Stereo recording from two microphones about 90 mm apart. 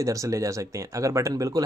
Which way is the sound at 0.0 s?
35° right (ahead or behind).